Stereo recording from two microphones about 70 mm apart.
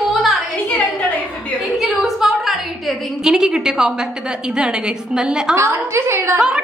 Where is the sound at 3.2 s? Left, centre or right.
Centre.